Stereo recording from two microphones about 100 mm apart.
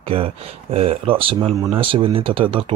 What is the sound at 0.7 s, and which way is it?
Speech, 75° right (ahead or behind).